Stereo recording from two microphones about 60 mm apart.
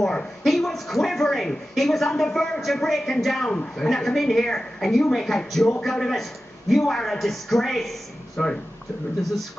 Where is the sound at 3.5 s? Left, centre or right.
Centre.